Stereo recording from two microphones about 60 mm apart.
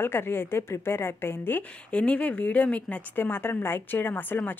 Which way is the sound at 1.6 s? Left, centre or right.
Left.